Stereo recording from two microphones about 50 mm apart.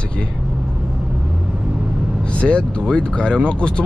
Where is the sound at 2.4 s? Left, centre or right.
Centre.